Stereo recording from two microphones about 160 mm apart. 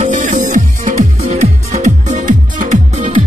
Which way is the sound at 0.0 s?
55° right (ahead or behind).